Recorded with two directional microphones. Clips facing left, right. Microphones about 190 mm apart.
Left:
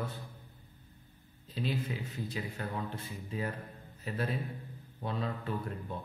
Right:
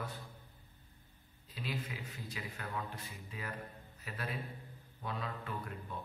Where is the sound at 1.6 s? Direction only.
30° left (ahead or behind).